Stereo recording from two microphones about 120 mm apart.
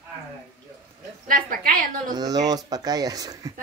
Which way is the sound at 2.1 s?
35° right (ahead or behind).